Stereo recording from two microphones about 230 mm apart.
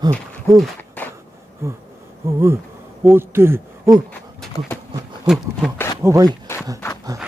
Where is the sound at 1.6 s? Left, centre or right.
Centre.